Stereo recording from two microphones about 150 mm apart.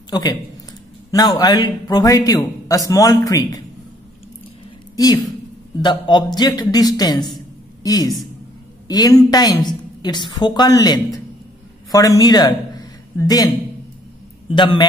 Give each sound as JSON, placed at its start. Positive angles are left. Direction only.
{"t": 0.1, "sound": "a man's voice", "side_deg": 30}
{"t": 4.9, "sound": "a man's voice", "side_deg": 25}
{"t": 14.5, "sound": "a man's voice", "side_deg": 30}